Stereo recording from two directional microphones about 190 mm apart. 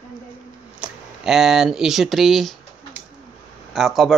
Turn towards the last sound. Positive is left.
turn(degrees=0)  # may be behind; listen again after turning